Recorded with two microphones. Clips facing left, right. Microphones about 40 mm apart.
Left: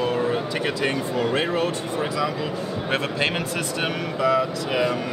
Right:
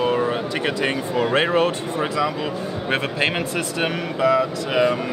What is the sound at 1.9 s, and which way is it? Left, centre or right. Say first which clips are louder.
Speech: right 2 dB; centre.